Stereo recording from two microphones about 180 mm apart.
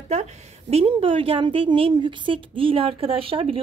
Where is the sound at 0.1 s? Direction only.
35° right (ahead or behind).